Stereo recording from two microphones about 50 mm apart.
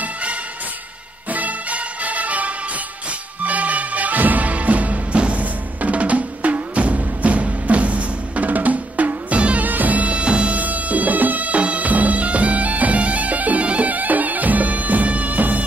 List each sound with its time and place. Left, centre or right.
1.3 s music: right